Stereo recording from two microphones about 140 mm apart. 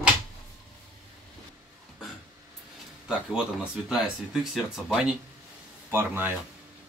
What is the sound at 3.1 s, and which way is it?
Speech, 5° right (ahead or behind).